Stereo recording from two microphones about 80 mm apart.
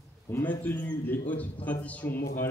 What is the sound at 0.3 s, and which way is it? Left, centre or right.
A man's voice, left.